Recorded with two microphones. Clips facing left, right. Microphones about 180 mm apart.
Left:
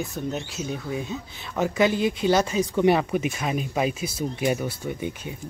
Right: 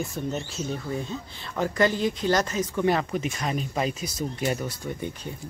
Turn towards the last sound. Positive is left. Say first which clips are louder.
# left 2 dB
turn(degrees=10)  # may be behind; listen again after turning